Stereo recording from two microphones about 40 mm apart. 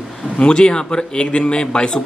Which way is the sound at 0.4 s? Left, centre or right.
Left.